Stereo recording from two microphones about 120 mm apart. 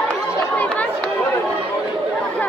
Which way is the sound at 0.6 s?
10° left (ahead or behind).